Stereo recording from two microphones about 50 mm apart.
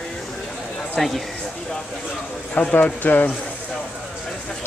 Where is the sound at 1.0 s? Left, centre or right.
Centre.